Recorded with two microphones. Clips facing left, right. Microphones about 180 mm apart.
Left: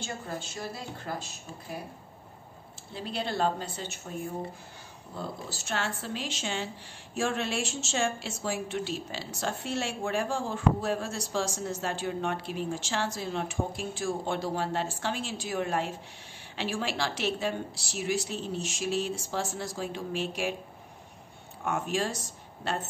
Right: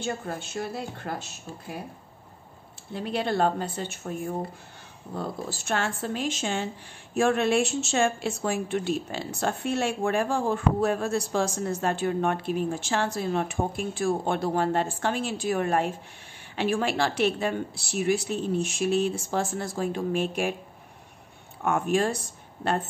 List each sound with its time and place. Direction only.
0.0 s a woman's voice: 60° right (ahead or behind)
2.9 s a woman's voice: 55° right (ahead or behind)
5.5 s a woman's voice: 55° right (ahead or behind)
21.6 s a woman's voice: 55° right (ahead or behind)